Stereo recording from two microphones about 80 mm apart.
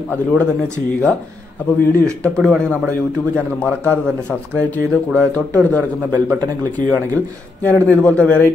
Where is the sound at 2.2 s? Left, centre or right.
Centre.